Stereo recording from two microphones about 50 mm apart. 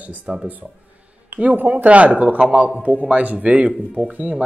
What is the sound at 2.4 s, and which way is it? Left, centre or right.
A man's voice, centre.